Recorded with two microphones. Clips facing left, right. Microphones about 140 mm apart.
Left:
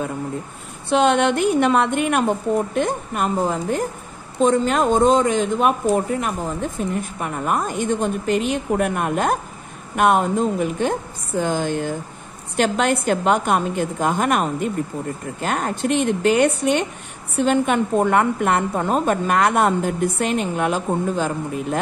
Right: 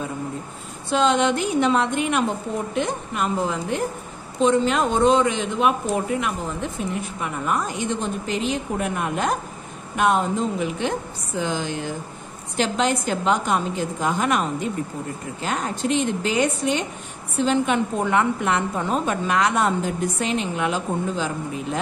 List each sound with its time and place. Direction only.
0.8 s a woman's voice: 60° left (ahead or behind)